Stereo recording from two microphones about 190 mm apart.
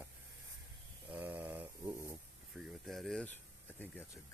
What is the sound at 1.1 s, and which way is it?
Speech, 10° right (ahead or behind).